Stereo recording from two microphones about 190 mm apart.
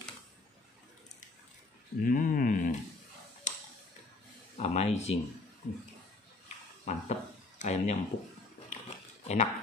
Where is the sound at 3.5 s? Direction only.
40° left (ahead or behind).